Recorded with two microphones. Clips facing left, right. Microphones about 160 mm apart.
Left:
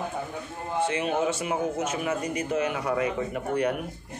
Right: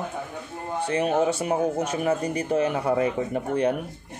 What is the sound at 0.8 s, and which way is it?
Speech, 35° right (ahead or behind).